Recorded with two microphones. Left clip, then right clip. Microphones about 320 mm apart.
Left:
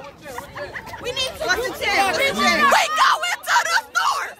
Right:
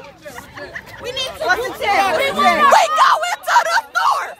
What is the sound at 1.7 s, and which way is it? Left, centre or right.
Speech, centre.